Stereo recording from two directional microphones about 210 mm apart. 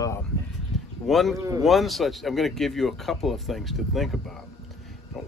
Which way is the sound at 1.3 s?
15° right (ahead or behind).